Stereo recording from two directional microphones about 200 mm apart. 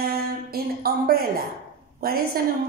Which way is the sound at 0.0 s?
50° right (ahead or behind).